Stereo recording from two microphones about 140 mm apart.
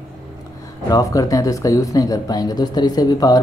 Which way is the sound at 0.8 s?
25° left (ahead or behind).